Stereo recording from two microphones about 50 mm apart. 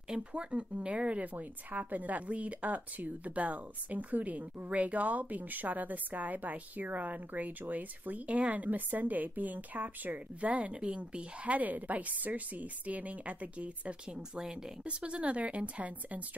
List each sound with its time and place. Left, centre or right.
0.1 s a woman's voice: right